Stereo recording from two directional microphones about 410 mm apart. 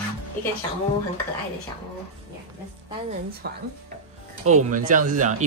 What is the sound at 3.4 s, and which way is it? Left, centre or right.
Speech, right.